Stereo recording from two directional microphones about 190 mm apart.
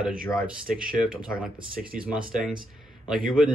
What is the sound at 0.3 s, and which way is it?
Speech, 5° right (ahead or behind).